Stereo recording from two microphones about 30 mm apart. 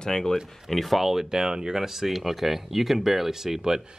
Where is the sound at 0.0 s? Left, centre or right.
Centre.